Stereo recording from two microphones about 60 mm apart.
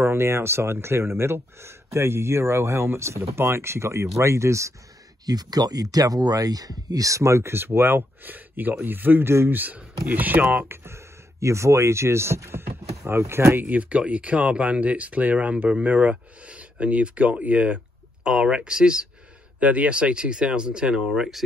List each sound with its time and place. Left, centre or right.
0.0 s speech: right
5.2 s speech: right
10.7 s speech: right
13.7 s speech: right
18.2 s speech: centre
21.1 s speech: centre